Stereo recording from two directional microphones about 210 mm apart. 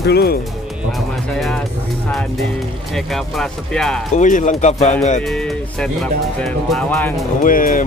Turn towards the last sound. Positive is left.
turn(degrees=40)  # may be behind; listen again after turning